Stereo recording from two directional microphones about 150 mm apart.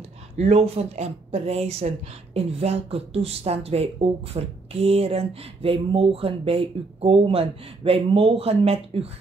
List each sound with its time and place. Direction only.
0.4 s speech: 45° right (ahead or behind)